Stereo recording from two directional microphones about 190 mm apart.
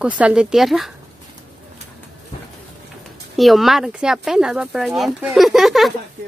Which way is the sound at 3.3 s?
Centre (ahead or behind).